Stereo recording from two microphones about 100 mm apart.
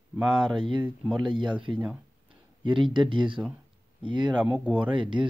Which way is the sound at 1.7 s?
10° right (ahead or behind).